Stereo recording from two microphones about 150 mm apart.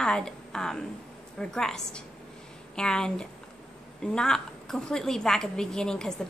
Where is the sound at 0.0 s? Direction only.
5° left (ahead or behind).